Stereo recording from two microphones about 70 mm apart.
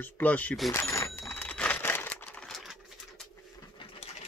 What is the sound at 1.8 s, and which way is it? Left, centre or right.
Crumpling, left.